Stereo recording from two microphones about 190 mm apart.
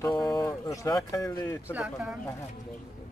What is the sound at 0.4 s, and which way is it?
Speech, 15° left (ahead or behind).